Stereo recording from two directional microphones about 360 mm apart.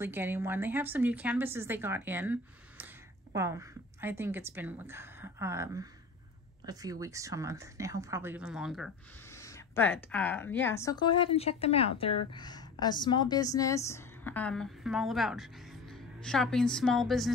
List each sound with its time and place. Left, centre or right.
0.0 s speech: centre
3.3 s a woman's voice: centre